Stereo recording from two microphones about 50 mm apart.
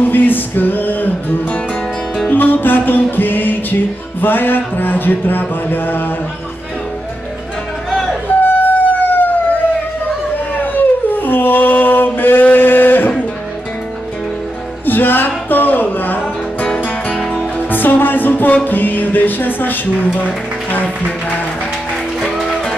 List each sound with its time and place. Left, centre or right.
0.0 s music: left
7.9 s music: centre
8.4 s siren: left
10.6 s a sound: left
14.9 s speech: left
16.6 s music: centre
17.6 s music: left